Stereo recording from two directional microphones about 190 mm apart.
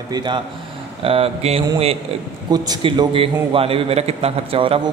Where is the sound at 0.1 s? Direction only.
25° right (ahead or behind).